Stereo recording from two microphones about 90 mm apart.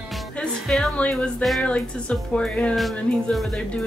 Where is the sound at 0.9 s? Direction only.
10° left (ahead or behind).